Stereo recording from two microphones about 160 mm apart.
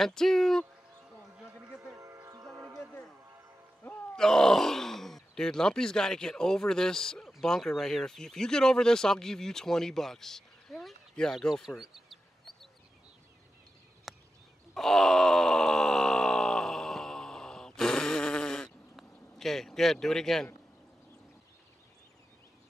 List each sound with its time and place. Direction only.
0.0 s speech: 5° left (ahead or behind)
1.6 s music: 5° right (ahead or behind)
2.0 s music: 20° right (ahead or behind)
2.5 s a sound: 20° right (ahead or behind)
3.8 s speech: 10° left (ahead or behind)
14.1 s a sound: centre (ahead or behind)
14.7 s groan: centre (ahead or behind)